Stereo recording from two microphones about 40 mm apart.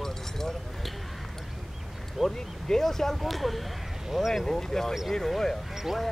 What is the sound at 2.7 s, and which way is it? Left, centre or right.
Speech, centre.